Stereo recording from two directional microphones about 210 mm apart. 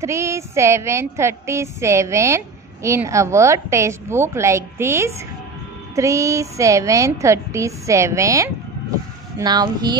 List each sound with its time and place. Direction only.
0.0 s speech: 15° right (ahead or behind)